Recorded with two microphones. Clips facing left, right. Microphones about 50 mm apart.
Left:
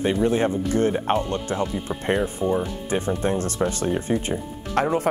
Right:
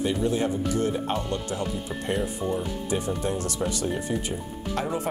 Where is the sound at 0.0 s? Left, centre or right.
Left.